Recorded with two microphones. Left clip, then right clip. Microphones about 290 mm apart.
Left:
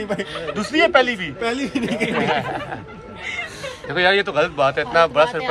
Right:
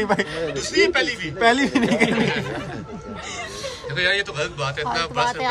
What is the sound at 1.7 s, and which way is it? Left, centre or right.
Speech, right.